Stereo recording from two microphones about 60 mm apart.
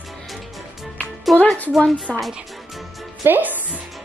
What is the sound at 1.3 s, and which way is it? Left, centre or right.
Speech, centre.